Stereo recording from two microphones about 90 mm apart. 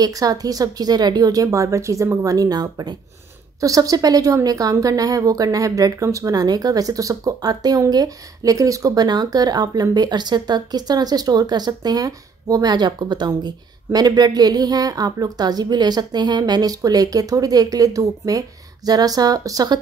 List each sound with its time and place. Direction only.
0.0 s a woman's voice: 45° right (ahead or behind)